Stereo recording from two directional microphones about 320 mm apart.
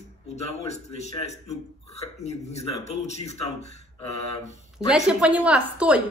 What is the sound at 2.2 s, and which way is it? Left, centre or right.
Speech, centre.